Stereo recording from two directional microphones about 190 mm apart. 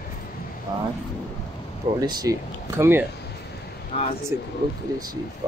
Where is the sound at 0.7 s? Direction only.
20° right (ahead or behind).